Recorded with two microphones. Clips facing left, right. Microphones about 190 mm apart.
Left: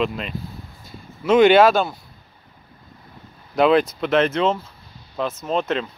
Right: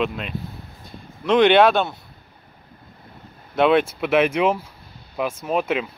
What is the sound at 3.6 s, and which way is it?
Speech, 5° right (ahead or behind).